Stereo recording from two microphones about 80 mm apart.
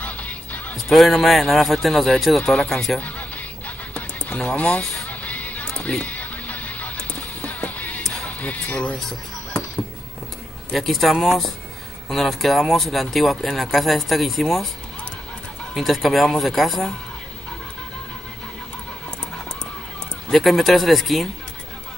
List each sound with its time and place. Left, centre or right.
0.0 s music: centre
0.7 s speech: centre
3.0 s music: centre
10.7 s speech: centre
15.7 s speech: centre
20.2 s speech: centre